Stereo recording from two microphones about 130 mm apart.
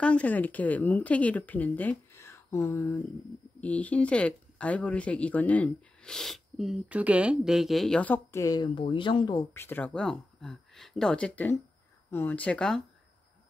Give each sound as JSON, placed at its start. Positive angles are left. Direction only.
{"t": 0.0, "sound": "speech", "side_deg": 10}
{"t": 2.1, "sound": "a sound", "side_deg": 20}
{"t": 3.6, "sound": "speech", "side_deg": 10}
{"t": 8.0, "sound": "speech", "side_deg": 15}
{"t": 8.4, "sound": "speech", "side_deg": 30}